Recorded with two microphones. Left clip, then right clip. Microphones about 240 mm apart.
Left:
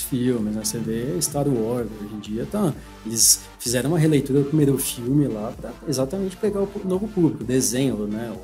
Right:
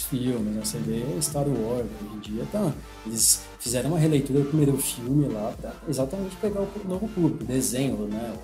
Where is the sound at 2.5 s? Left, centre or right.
Left.